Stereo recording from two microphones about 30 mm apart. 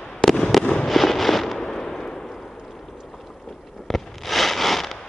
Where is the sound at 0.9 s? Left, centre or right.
Centre.